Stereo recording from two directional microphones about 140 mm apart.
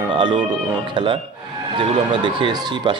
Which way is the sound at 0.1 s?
35° right (ahead or behind).